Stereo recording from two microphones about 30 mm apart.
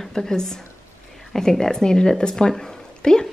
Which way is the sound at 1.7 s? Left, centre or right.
Left.